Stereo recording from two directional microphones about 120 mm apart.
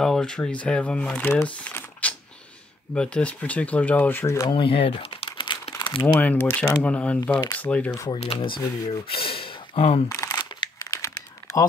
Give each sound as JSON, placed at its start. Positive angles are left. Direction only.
{"t": 0.0, "sound": "speech", "side_deg": 5}
{"t": 1.3, "sound": "typing", "side_deg": 15}
{"t": 2.9, "sound": "speech", "side_deg": 10}
{"t": 4.5, "sound": "crumpling", "side_deg": 50}
{"t": 6.1, "sound": "speech", "side_deg": 15}
{"t": 8.1, "sound": "speech", "side_deg": 55}
{"t": 10.0, "sound": "crumpling", "side_deg": 30}
{"t": 10.8, "sound": "crumpling", "side_deg": 25}